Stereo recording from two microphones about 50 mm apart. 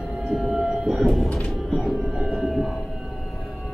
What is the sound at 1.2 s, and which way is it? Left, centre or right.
Music, left.